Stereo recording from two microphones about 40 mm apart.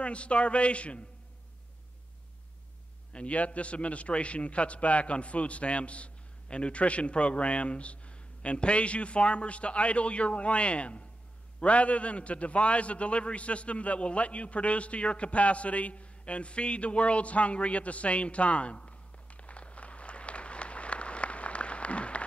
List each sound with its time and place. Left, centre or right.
0.0 s a man's voice: left
3.1 s a man's voice: left